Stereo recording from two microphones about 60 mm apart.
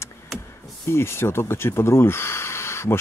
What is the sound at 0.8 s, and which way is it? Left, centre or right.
Speech, left.